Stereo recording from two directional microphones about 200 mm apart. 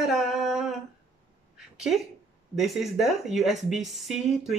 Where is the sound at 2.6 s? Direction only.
Centre (ahead or behind).